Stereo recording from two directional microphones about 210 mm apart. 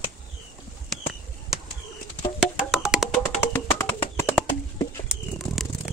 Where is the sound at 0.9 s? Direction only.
Centre (ahead or behind).